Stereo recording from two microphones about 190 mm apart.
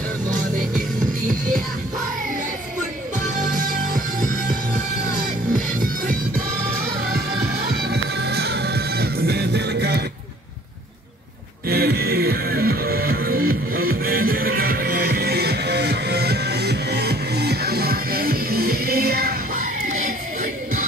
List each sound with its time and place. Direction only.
3.9 s music: 45° right (ahead or behind)
7.9 s music: 60° right (ahead or behind)
11.7 s music: 55° right (ahead or behind)